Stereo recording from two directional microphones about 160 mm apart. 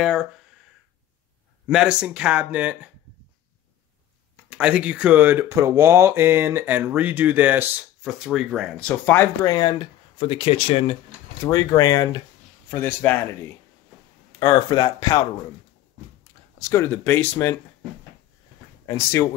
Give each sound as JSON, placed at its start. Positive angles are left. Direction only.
{"t": 0.0, "sound": "speech", "side_deg": 0}
{"t": 1.7, "sound": "speech", "side_deg": -5}
{"t": 4.5, "sound": "speech", "side_deg": -5}
{"t": 8.7, "sound": "speech", "side_deg": 10}
{"t": 11.4, "sound": "speech", "side_deg": 20}
{"t": 12.7, "sound": "speech", "side_deg": 10}
{"t": 14.4, "sound": "speech", "side_deg": 25}
{"t": 16.5, "sound": "speech", "side_deg": 20}
{"t": 18.9, "sound": "speech", "side_deg": 15}